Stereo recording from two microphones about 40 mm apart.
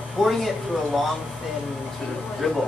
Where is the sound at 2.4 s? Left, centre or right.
Centre.